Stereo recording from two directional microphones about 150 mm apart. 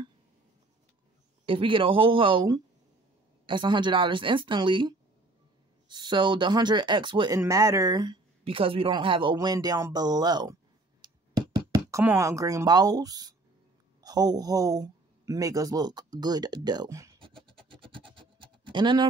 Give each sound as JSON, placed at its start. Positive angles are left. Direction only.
{"t": 1.4, "sound": "a woman's voice", "side_deg": -35}
{"t": 17.9, "sound": "scratch", "side_deg": -35}